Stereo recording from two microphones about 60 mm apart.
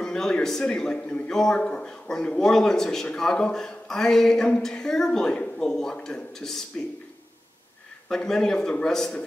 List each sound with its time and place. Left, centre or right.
0.0 s a man's voice: centre
8.1 s a man's voice: centre